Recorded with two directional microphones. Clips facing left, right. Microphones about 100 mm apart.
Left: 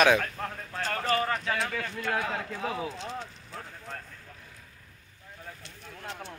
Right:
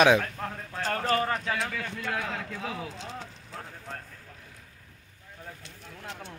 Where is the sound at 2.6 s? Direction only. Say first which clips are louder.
Left 5 dB; 5° left (ahead or behind).